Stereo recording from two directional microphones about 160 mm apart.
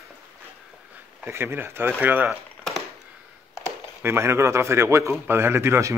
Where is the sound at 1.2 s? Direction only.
15° right (ahead or behind).